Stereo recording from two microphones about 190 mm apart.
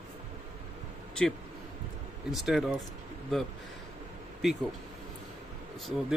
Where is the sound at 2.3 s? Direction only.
Centre (ahead or behind).